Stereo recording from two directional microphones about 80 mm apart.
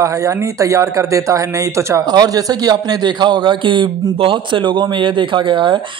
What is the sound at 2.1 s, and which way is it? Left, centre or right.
A man's voice, right.